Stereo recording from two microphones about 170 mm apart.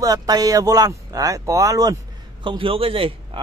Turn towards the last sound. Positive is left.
turn(degrees=-35)  # may be behind; listen again after turning